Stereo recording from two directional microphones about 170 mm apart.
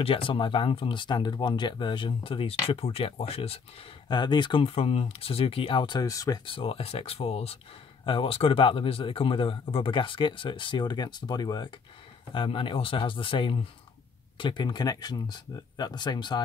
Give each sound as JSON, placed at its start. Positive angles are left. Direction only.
{"t": 0.0, "sound": "speech", "side_deg": 30}